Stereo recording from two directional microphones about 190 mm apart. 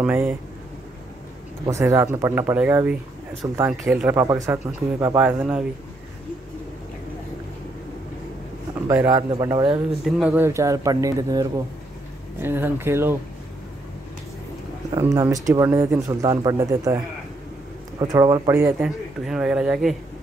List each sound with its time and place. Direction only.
0.0 s speech: 10° right (ahead or behind)
1.7 s speech: 15° right (ahead or behind)
8.8 s a man's voice: 15° right (ahead or behind)
10.0 s speech: 5° right (ahead or behind)
15.0 s speech: 15° right (ahead or behind)
19.2 s speech: 5° right (ahead or behind)